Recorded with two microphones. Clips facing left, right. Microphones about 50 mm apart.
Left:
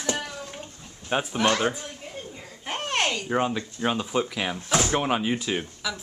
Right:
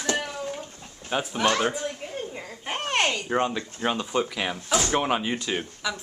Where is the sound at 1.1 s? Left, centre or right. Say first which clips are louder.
Left 1 dB; centre.